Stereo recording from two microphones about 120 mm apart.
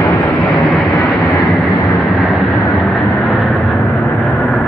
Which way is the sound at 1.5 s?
Centre (ahead or behind).